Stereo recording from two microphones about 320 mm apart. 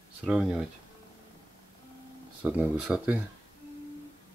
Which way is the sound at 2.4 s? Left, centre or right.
Centre.